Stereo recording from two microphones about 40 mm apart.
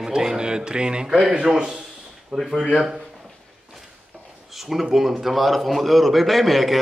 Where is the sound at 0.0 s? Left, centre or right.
Centre.